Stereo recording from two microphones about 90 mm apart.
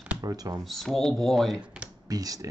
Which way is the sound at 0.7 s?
5° left (ahead or behind).